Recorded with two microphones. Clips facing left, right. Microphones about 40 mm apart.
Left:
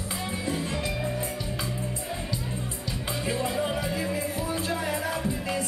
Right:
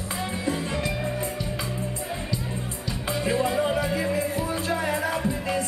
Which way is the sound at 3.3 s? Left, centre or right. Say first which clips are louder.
Right 5 dB; centre.